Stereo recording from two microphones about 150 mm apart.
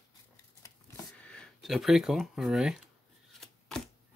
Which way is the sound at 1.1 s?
5° left (ahead or behind).